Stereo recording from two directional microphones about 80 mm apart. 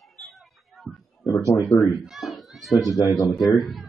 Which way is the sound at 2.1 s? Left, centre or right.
Centre.